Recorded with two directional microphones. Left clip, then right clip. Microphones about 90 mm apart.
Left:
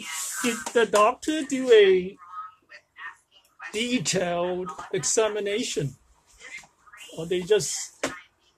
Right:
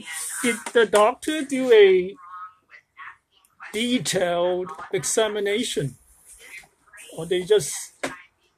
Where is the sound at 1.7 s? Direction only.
15° right (ahead or behind).